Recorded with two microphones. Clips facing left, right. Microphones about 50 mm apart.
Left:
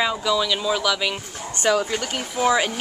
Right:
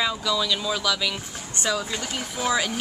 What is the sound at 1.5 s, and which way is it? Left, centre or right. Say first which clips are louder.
Speech: left 6 dB; left.